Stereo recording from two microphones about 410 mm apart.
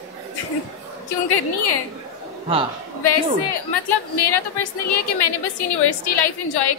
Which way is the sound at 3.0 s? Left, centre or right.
Left.